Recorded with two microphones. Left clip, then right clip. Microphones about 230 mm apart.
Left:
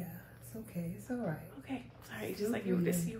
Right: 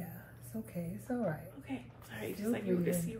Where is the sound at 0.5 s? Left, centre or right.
Centre.